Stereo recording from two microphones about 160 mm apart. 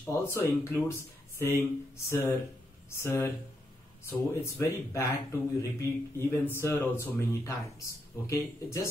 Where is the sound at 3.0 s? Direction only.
15° left (ahead or behind).